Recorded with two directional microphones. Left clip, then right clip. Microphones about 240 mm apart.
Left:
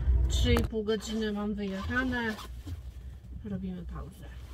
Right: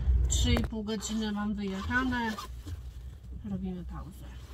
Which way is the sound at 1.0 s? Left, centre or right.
Centre.